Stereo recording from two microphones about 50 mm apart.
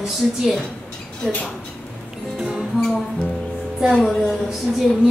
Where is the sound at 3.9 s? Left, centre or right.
Centre.